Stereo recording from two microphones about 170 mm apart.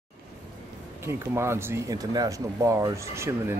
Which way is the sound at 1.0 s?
15° right (ahead or behind).